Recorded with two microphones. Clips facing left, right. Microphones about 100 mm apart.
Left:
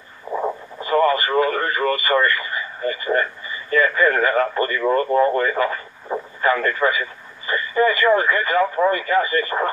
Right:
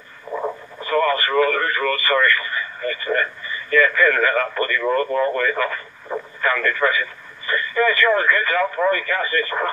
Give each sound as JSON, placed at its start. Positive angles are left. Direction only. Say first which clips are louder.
{"t": 0.3, "sound": "radio", "louder": "left 2 dB", "side_deg": 15}
{"t": 0.7, "sound": "speech", "louder": "left 2 dB", "side_deg": 25}